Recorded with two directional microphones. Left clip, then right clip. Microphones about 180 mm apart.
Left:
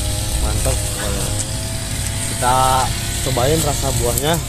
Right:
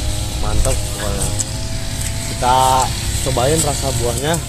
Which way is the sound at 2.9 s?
30° left (ahead or behind).